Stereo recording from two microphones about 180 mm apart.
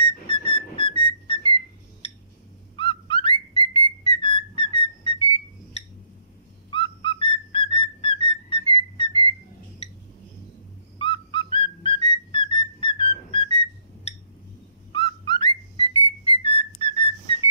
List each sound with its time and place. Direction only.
0.0 s whistle: 30° left (ahead or behind)
2.7 s whistle: 30° left (ahead or behind)
11.0 s whistle: 25° left (ahead or behind)
14.9 s whistling: 30° left (ahead or behind)
16.3 s whistle: 30° left (ahead or behind)